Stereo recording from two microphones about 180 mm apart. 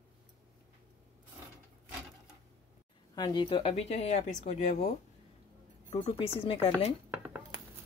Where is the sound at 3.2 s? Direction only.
25° left (ahead or behind).